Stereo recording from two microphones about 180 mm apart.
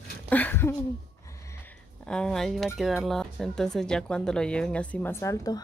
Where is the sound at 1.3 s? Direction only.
15° left (ahead or behind).